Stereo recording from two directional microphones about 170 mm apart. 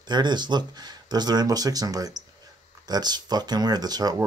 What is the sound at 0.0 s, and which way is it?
Speech, 25° right (ahead or behind).